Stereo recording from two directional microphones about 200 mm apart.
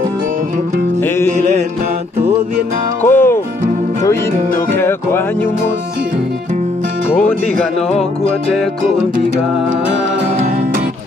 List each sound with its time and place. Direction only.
1.0 s music: 10° left (ahead or behind)
1.3 s music: 35° right (ahead or behind)
3.0 s music: 10° left (ahead or behind)
4.0 s speech: 15° left (ahead or behind)
7.2 s speech: 5° left (ahead or behind)
10.3 s music: 35° right (ahead or behind)